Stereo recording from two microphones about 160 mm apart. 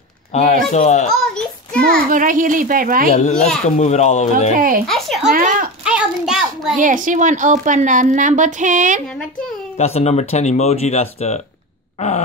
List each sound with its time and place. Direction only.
0.3 s speech: 45° left (ahead or behind)
1.2 s child singing: 5° left (ahead or behind)
2.0 s speech: 55° right (ahead or behind)
3.1 s speech: 45° left (ahead or behind)
4.6 s speech: 60° right (ahead or behind)
4.8 s speech: centre (ahead or behind)
5.3 s speech: 60° right (ahead or behind)
5.9 s a sound: 5° right (ahead or behind)
6.8 s a woman's voice: 55° right (ahead or behind)
9.8 s speech: 45° left (ahead or behind)